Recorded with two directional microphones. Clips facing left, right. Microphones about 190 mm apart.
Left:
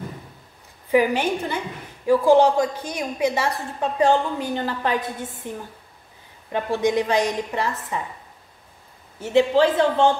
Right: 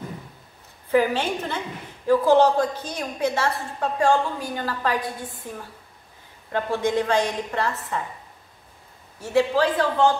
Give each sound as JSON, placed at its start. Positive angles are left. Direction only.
{"t": 0.9, "sound": "a woman's voice", "side_deg": 15}
{"t": 6.5, "sound": "a woman's voice", "side_deg": 15}
{"t": 9.2, "sound": "speech", "side_deg": 25}